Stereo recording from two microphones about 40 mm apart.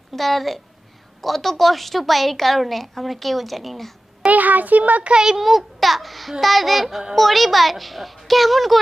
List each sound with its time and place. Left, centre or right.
0.1 s a woman's voice: centre
4.3 s a child's voice: right
5.2 s a woman's voice: centre